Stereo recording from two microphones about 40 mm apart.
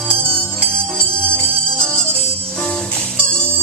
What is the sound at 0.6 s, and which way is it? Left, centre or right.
Music, left.